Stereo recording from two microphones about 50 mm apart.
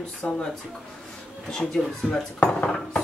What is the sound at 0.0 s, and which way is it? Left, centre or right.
Speech, centre.